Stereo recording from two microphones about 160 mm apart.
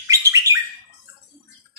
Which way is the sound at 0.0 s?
20° right (ahead or behind).